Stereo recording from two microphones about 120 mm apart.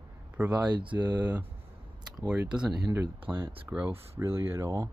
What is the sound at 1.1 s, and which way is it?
Speech, 15° right (ahead or behind).